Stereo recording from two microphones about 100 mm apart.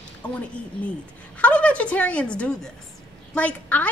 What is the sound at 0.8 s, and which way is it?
A woman's voice, 15° left (ahead or behind).